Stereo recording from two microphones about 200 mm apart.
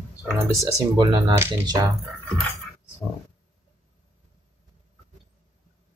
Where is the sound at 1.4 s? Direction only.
15° right (ahead or behind).